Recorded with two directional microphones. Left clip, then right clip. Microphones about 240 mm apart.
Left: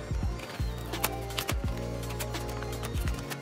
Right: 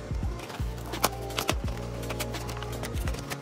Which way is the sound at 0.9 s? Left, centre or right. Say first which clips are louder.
Right 5 dB; centre.